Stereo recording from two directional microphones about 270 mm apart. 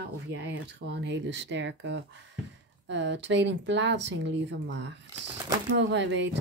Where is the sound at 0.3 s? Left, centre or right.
Right.